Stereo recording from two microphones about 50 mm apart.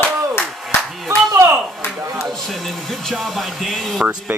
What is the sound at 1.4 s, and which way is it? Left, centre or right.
Speech, right.